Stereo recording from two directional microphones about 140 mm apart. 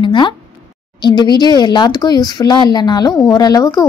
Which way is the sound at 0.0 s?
35° left (ahead or behind).